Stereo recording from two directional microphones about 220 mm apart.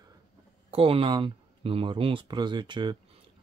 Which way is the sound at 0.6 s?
25° right (ahead or behind).